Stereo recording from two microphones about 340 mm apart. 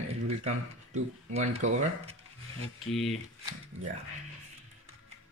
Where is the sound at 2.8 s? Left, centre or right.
Centre.